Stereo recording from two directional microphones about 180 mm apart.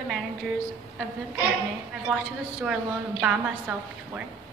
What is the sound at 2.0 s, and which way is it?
A woman's voice, 5° right (ahead or behind).